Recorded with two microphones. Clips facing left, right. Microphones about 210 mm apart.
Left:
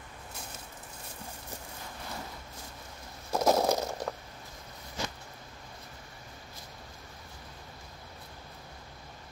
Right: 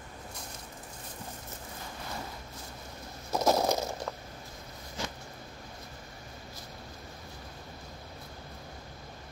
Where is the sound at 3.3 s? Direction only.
Centre (ahead or behind).